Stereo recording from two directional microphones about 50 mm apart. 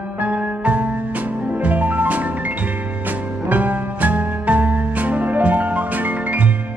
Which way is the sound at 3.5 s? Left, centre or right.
Right.